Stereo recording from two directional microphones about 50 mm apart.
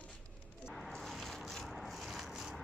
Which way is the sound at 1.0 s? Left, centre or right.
Centre.